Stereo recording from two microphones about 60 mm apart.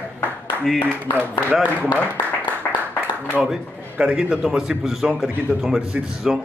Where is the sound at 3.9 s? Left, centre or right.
Centre.